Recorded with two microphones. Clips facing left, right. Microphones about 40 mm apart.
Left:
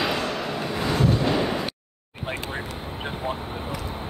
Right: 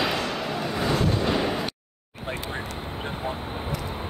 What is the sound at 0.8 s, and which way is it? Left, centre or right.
Vehicle, centre.